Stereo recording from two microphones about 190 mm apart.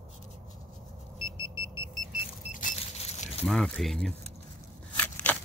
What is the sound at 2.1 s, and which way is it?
Vehicle, 40° left (ahead or behind).